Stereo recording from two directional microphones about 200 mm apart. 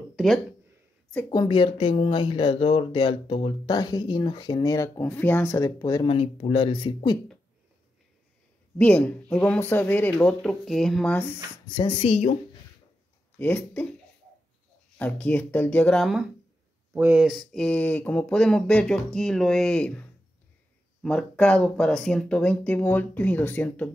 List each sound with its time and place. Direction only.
0.1 s a sound: centre (ahead or behind)
1.3 s speech: 20° left (ahead or behind)
6.1 s speech: 30° left (ahead or behind)
8.7 s speech: 5° left (ahead or behind)
11.6 s speech: 25° left (ahead or behind)
13.4 s speech: 10° left (ahead or behind)
15.0 s speech: 5° left (ahead or behind)
21.0 s speech: 5° left (ahead or behind)